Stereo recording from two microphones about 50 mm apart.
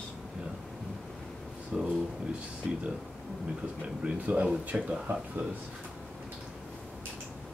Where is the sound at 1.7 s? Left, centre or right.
Centre.